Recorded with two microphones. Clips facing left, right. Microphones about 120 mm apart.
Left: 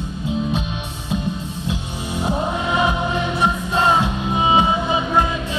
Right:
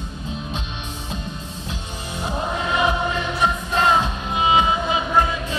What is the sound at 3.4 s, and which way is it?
Music, 15° left (ahead or behind).